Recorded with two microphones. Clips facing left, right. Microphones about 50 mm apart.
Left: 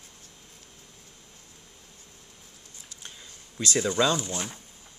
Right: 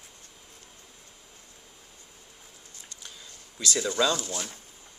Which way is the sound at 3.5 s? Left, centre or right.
Centre.